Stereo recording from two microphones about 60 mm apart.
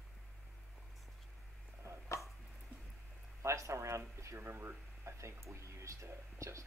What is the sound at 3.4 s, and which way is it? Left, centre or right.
Speech, right.